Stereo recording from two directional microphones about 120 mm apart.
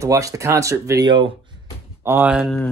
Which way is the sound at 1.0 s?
40° right (ahead or behind).